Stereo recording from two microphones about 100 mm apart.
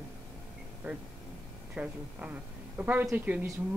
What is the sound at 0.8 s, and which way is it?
Speech, 20° right (ahead or behind).